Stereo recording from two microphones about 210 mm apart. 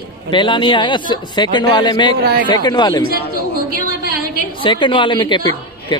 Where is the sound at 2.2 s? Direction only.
50° right (ahead or behind).